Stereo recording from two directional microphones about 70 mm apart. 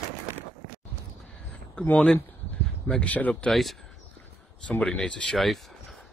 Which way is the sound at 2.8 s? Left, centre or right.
Centre.